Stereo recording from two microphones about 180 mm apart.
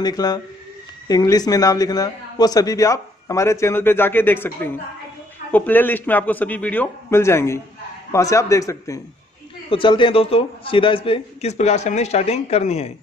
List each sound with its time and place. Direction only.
0.0 s a man's voice: 20° left (ahead or behind)
9.7 s a man's voice: 30° left (ahead or behind)